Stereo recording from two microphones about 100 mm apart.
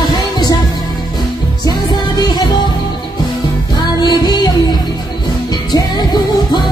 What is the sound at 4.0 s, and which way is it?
Music, 45° left (ahead or behind).